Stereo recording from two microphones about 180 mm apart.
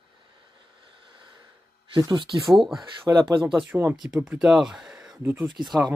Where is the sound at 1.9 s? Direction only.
25° right (ahead or behind).